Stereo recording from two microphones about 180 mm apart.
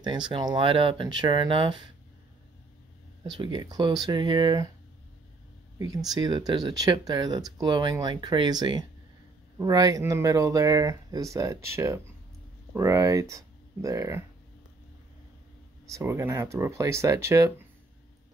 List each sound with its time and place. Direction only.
0.0 s speech: 25° right (ahead or behind)
3.3 s speech: 25° right (ahead or behind)
6.1 s speech: 25° right (ahead or behind)
15.9 s speech: 15° right (ahead or behind)